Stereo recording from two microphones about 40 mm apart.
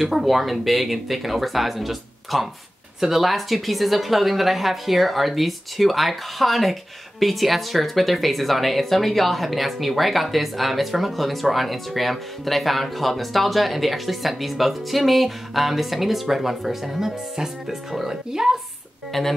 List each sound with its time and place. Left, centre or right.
0.0 s a woman's voice: centre
19.1 s a woman's voice: centre